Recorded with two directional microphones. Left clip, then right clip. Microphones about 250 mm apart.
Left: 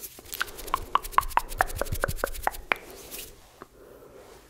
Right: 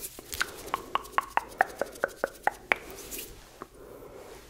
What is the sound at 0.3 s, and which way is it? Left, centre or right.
Chopping, centre.